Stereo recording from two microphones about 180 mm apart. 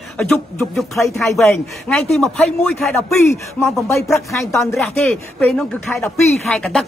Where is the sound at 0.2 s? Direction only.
5° left (ahead or behind).